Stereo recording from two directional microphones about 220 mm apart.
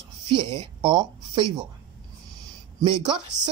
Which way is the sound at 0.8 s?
20° right (ahead or behind).